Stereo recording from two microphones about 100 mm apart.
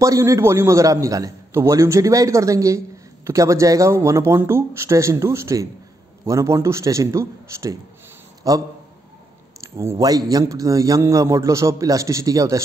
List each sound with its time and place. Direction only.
0.0 s a man's voice: 30° right (ahead or behind)